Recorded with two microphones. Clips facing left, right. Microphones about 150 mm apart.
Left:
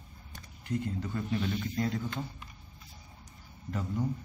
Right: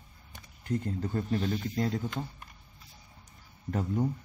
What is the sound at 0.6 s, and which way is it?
Speech, 40° right (ahead or behind).